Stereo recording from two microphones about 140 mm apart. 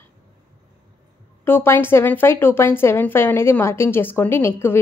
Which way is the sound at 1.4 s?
15° left (ahead or behind).